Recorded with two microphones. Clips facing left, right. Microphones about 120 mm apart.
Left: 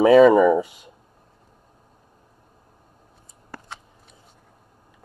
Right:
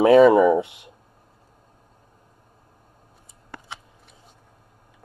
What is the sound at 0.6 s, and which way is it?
Speech, 65° right (ahead or behind).